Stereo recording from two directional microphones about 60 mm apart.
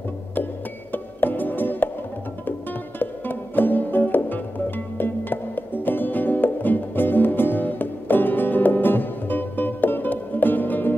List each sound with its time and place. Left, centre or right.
0.9 s music: left
3.0 s music: left